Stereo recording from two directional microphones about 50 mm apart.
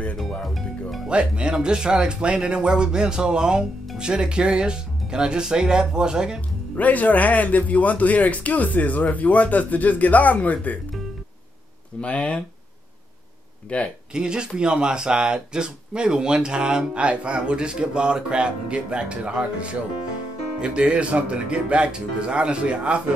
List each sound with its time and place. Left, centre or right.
0.2 s music: centre
1.0 s speech: right
6.8 s speech: left
12.0 s speech: left
13.7 s speech: left
14.1 s speech: centre